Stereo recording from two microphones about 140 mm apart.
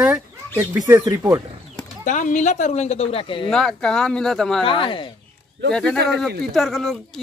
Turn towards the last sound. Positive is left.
turn(degrees=0)  # may be behind; listen again after turning